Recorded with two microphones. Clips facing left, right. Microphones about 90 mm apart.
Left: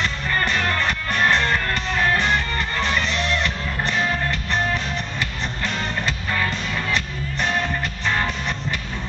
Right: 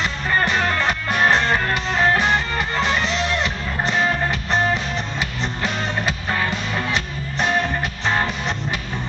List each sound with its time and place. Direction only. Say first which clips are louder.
0.0 s music: right 2 dB; 15° right (ahead or behind)
5.6 s music: right 2 dB; 15° right (ahead or behind)